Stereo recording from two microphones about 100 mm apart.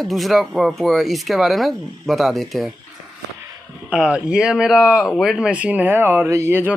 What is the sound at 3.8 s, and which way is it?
Speech, 10° right (ahead or behind).